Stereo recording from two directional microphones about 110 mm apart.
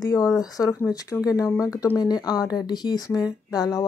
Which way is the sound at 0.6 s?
30° left (ahead or behind).